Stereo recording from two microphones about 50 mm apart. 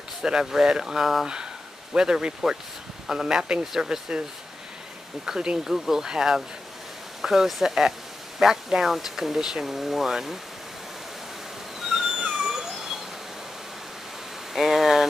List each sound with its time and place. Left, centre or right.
0.2 s speech: centre
5.2 s speech: centre
12.2 s cat: centre
14.5 s speech: centre